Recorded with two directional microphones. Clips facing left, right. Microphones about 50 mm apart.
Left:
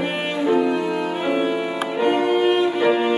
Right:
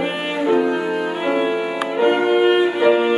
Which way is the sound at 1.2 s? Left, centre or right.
Centre.